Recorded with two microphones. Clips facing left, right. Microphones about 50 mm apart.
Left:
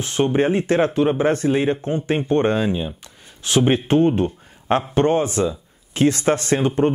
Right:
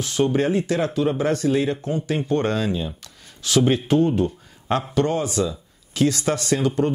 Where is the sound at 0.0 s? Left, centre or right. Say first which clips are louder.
Left 2 dB; left.